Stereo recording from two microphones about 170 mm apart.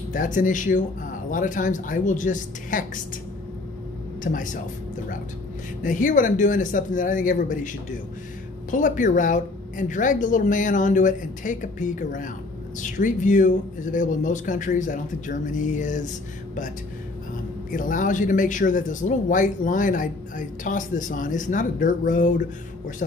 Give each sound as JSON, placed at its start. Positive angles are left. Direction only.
{"t": 0.1, "sound": "speech", "side_deg": 50}
{"t": 4.2, "sound": "speech", "side_deg": 50}
{"t": 5.8, "sound": "speech", "side_deg": 50}
{"t": 17.6, "sound": "speech", "side_deg": 50}